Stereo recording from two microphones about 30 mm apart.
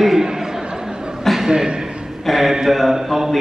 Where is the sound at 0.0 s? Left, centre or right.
Centre.